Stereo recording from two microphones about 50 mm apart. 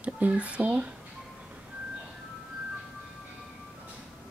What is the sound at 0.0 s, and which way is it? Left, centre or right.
Speech, right.